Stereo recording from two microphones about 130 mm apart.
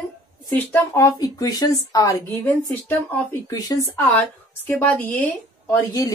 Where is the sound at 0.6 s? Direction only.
25° left (ahead or behind).